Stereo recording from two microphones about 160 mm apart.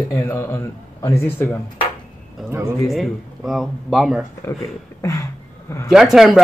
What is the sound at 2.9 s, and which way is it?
Speech, centre (ahead or behind).